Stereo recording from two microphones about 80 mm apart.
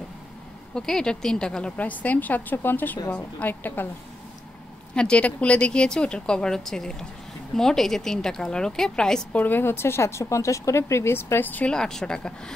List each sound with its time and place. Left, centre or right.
0.7 s a woman's voice: centre; by 3.9 s left
4.9 s speech: centre
9.4 s speech: left
11.7 s speech: centre